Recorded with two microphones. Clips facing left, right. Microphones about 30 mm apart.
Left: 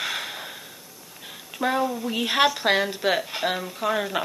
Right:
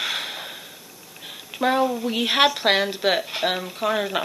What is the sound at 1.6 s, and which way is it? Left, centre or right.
A woman's voice, centre.